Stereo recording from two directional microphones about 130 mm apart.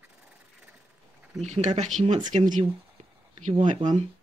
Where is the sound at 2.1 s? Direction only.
35° right (ahead or behind).